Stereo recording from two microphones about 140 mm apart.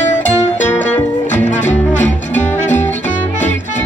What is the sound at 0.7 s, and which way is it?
Music, 60° left (ahead or behind).